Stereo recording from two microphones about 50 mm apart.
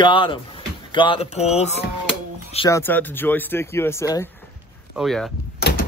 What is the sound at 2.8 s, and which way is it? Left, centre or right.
Speech, left.